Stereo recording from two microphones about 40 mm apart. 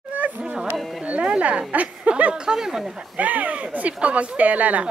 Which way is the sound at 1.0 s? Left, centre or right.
Right.